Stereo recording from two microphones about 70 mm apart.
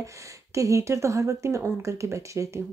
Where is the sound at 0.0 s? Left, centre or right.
Right.